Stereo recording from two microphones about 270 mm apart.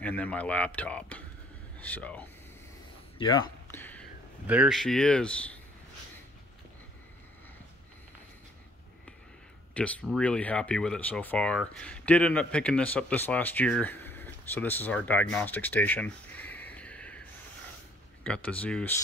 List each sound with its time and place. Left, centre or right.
0.0 s speech: centre
3.2 s speech: centre
3.7 s a sound: centre
4.5 s speech: centre
9.8 s speech: centre
18.2 s speech: centre